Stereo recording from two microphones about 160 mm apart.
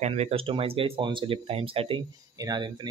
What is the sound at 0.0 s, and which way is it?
Speech, 40° right (ahead or behind).